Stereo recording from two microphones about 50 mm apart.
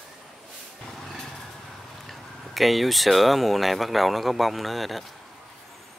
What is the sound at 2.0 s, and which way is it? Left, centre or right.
Speech, centre.